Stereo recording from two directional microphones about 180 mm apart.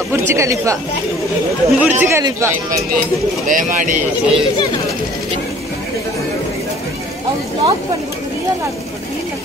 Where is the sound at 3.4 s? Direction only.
45° right (ahead or behind).